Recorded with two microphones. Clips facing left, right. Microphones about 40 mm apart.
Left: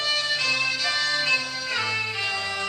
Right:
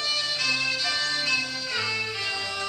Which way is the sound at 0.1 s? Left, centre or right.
Left.